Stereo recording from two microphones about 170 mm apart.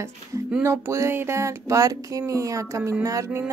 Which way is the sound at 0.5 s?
15° right (ahead or behind).